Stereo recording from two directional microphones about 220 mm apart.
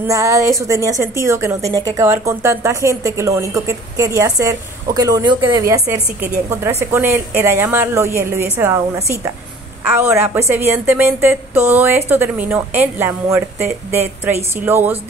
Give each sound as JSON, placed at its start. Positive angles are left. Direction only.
{"t": 0.0, "sound": "a woman's voice", "side_deg": -15}